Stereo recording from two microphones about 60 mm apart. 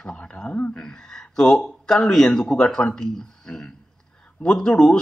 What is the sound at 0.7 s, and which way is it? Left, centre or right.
A man's voice, centre.